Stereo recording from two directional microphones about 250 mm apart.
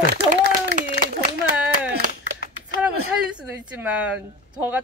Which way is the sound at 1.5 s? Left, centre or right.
Right.